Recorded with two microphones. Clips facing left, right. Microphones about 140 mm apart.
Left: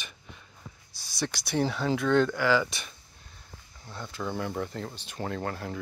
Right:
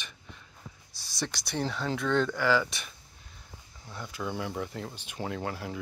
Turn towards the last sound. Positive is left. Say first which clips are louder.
# left 1 dB
turn(degrees=-10)  # may be behind; listen again after turning